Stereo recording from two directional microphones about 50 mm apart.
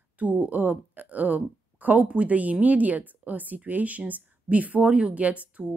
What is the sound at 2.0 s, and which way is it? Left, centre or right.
A woman's voice, right.